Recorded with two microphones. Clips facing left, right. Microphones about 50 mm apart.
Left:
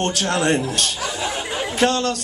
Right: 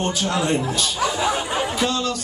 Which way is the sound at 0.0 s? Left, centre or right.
Left.